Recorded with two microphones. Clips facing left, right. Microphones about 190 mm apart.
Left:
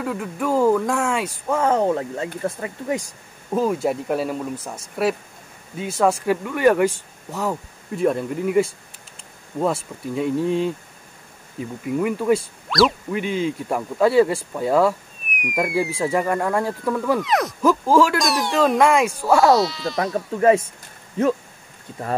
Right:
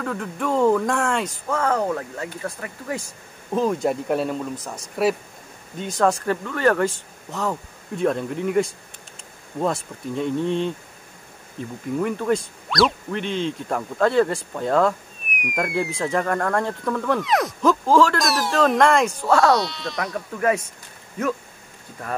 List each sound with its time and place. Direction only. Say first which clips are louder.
0.0 s speech: left 2 dB; 5° left (ahead or behind)
1.5 s speech: left 4 dB; 20° left (ahead or behind)
3.5 s speech: left 1 dB; 5° left (ahead or behind)
18.2 s speech: left 1 dB; centre (ahead or behind)
20.0 s speech: left 5 dB; 25° left (ahead or behind)